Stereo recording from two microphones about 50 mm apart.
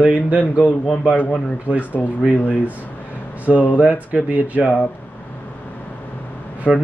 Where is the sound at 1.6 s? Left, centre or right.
Right.